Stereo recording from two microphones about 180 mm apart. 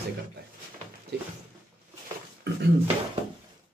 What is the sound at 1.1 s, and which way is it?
Speech, 65° right (ahead or behind).